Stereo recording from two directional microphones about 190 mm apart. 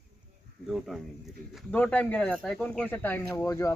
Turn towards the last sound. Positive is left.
turn(degrees=15)  # may be behind; listen again after turning